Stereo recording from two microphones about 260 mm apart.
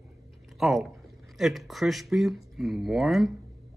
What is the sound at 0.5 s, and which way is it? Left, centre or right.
Speech, centre.